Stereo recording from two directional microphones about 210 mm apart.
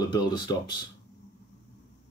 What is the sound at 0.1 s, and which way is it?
Speech, 20° left (ahead or behind).